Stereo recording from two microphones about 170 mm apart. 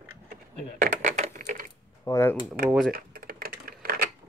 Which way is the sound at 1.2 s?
45° right (ahead or behind).